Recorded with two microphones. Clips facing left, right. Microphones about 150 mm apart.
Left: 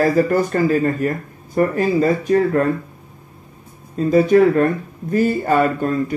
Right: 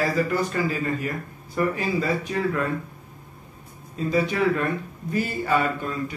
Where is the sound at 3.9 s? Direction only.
45° left (ahead or behind).